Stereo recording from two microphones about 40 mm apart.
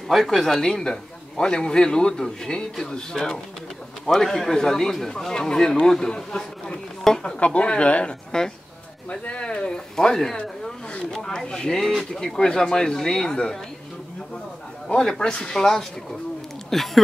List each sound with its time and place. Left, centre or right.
0.1 s speech: centre
1.4 s a man's voice: left
7.3 s a man's voice: left
15.0 s a man's voice: centre